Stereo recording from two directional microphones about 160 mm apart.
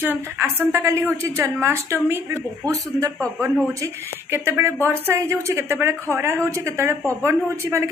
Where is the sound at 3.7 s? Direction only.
20° right (ahead or behind).